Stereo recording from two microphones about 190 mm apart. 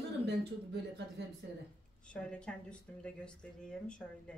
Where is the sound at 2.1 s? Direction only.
5° left (ahead or behind).